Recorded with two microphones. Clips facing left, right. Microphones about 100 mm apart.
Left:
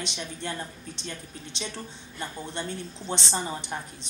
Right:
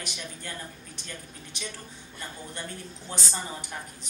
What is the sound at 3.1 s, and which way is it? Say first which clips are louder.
A woman's voice: left 5 dB; 25° left (ahead or behind).